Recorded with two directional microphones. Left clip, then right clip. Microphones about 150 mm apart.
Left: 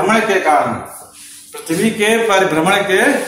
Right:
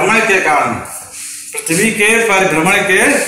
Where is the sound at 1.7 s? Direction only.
15° left (ahead or behind).